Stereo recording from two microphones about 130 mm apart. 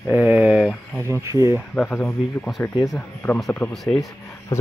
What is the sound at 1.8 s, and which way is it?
Speech, 10° left (ahead or behind).